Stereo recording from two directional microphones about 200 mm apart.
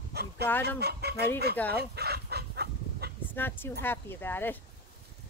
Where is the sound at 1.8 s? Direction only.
55° right (ahead or behind).